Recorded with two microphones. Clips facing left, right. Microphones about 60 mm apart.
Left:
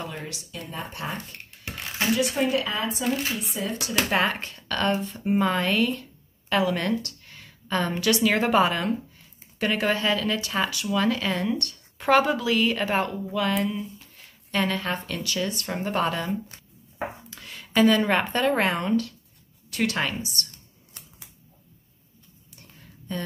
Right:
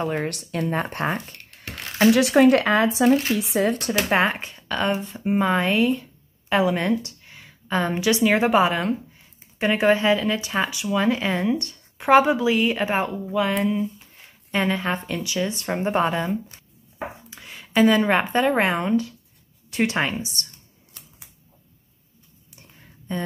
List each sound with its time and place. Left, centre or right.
0.2 s speech: right
2.0 s speech: right
4.1 s speech: right
13.7 s a sound: centre
15.1 s speech: centre
22.6 s a sound: centre